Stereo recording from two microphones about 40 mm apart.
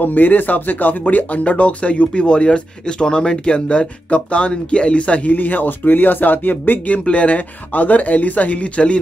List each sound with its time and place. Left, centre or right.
0.0 s speech: left
5.3 s speech: left
7.1 s speech: left